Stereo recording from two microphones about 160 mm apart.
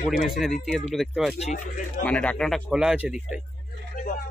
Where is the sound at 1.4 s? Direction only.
50° left (ahead or behind).